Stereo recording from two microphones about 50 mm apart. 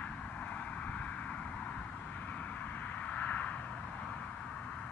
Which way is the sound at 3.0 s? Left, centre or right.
Left.